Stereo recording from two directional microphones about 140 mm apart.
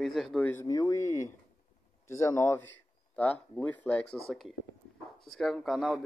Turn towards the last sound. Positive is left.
turn(degrees=0)  # may be behind; listen again after turning